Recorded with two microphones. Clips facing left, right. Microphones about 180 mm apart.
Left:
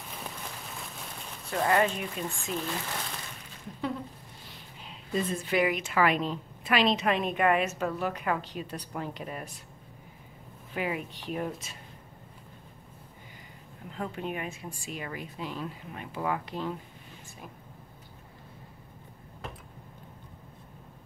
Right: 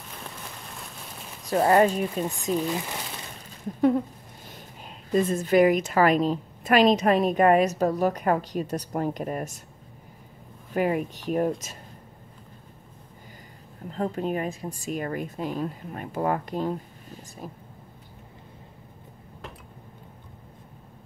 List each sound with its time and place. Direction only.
1.4 s speech: 35° right (ahead or behind)
2.5 s speech: 15° right (ahead or behind)
4.5 s a woman's voice: 45° right (ahead or behind)
10.7 s a woman's voice: 45° right (ahead or behind)
13.8 s a woman's voice: 40° right (ahead or behind)